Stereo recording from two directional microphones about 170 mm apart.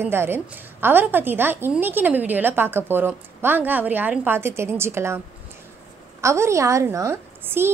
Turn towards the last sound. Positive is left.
turn(degrees=-15)  # may be behind; listen again after turning